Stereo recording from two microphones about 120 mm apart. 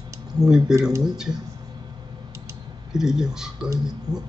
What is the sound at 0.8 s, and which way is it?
Speech, 25° right (ahead or behind).